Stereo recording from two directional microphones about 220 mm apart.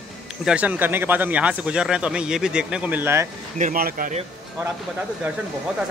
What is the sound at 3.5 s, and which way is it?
Speech, 35° right (ahead or behind).